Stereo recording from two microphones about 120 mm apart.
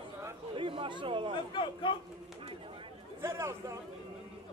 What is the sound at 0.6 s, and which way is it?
Chatter, 45° right (ahead or behind).